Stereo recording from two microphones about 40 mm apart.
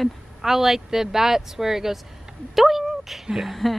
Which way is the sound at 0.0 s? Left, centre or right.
Centre.